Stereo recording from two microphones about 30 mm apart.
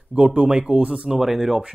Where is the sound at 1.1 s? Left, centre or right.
Centre.